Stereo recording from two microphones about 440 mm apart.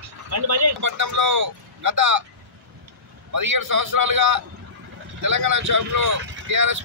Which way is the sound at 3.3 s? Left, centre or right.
Right.